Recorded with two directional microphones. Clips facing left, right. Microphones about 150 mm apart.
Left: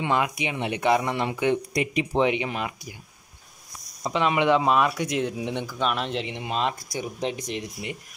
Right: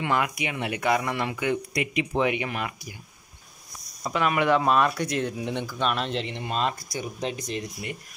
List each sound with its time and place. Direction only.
0.0 s speech: 20° left (ahead or behind)
4.0 s speech: 20° left (ahead or behind)